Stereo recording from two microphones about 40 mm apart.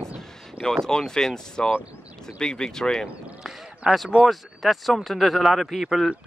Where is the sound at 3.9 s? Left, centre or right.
Centre.